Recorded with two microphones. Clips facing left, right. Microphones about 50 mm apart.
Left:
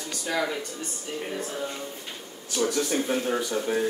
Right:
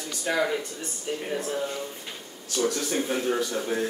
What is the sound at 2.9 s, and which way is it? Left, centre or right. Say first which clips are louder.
Speech: even; centre.